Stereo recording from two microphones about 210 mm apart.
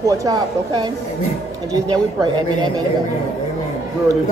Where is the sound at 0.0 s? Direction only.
15° right (ahead or behind).